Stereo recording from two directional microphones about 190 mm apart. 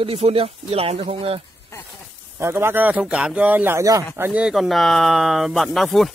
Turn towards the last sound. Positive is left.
turn(degrees=0)  # may be behind; listen again after turning